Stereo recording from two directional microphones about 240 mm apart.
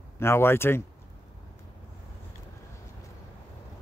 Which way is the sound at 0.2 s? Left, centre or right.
Centre.